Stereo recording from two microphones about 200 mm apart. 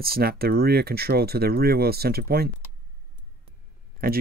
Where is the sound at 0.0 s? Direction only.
50° right (ahead or behind).